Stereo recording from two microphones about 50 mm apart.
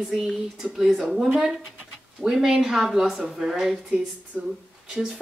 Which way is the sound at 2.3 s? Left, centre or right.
Centre.